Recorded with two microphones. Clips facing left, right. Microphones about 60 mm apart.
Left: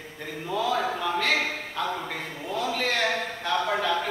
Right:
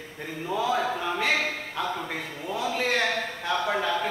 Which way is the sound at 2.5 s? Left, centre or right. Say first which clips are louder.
Right 1 dB; centre.